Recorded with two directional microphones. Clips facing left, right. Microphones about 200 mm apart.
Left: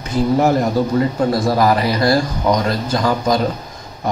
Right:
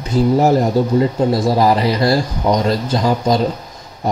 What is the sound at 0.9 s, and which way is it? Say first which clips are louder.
Speech: right 2 dB; 30° right (ahead or behind).